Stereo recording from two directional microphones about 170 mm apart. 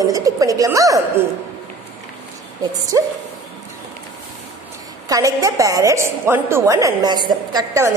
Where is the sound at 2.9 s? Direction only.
20° right (ahead or behind).